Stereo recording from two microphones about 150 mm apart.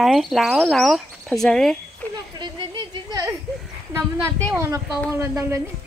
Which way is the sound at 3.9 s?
15° right (ahead or behind).